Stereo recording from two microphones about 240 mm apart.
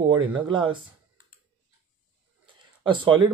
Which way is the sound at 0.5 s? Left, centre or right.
Centre.